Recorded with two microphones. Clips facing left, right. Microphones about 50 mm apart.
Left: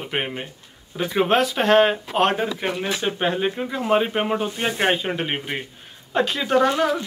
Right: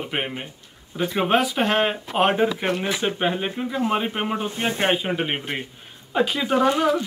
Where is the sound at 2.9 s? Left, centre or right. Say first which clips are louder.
Even; centre.